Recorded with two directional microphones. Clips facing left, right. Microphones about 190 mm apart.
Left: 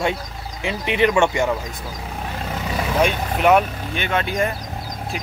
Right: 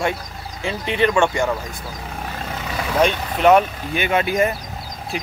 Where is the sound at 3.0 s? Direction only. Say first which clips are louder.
Right 3 dB; 5° left (ahead or behind).